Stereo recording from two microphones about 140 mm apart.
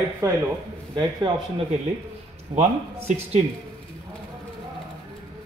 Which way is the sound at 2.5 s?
60° right (ahead or behind).